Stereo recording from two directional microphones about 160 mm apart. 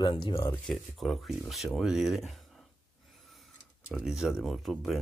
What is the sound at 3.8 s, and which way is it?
Speech, 5° right (ahead or behind).